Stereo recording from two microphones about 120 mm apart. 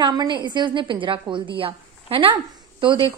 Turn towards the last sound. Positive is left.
turn(degrees=-45)  # may be behind; listen again after turning